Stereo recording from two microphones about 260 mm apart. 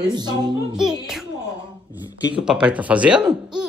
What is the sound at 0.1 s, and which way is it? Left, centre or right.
Music, centre.